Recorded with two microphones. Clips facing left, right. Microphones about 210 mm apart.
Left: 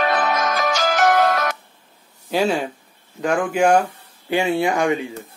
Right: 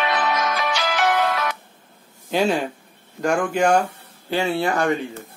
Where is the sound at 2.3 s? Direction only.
Centre (ahead or behind).